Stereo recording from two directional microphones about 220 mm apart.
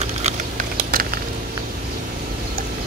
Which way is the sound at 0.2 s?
40° right (ahead or behind).